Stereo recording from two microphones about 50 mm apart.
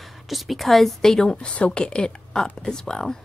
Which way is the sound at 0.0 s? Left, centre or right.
Centre.